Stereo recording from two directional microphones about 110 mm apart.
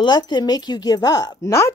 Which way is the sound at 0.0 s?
40° left (ahead or behind).